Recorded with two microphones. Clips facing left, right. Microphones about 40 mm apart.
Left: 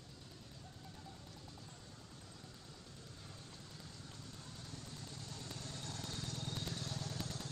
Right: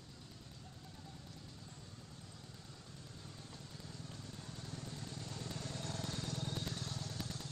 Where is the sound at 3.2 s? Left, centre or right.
Centre; by 6.1 s right.